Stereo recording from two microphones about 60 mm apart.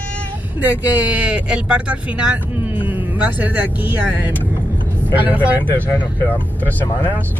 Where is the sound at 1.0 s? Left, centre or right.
Right.